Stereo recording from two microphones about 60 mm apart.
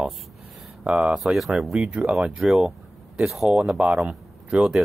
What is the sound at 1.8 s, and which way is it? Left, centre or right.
Speech, centre.